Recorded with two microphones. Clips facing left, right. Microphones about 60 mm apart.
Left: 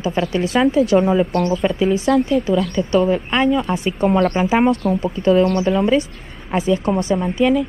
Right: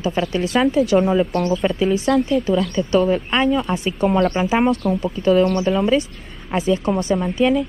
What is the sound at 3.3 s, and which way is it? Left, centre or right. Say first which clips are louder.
A woman's voice: left 1 dB; left.